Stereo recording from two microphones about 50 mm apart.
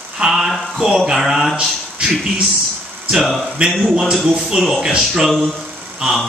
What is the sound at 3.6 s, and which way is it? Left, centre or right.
Speech, right.